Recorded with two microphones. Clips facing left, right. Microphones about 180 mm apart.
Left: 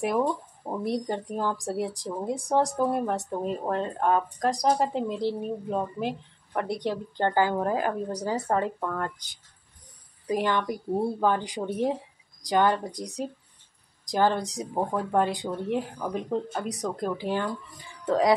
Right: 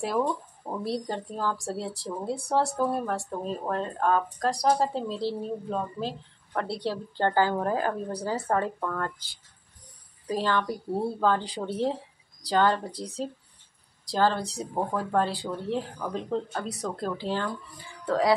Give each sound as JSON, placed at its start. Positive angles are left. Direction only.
{"t": 0.0, "sound": "speech", "side_deg": 15}